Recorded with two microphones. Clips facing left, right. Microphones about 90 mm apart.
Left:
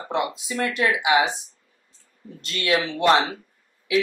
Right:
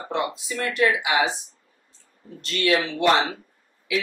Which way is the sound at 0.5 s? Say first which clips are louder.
Right 2 dB; 20° left (ahead or behind).